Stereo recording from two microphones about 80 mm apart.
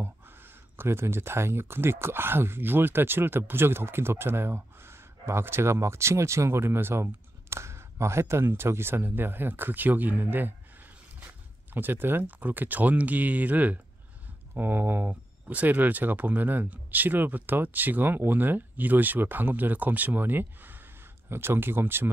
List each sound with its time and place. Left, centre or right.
0.0 s speech: right